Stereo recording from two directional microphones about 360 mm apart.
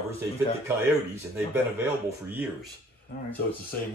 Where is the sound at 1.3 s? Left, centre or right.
Centre.